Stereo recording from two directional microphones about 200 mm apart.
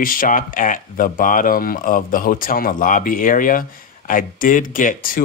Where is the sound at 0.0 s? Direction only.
45° left (ahead or behind).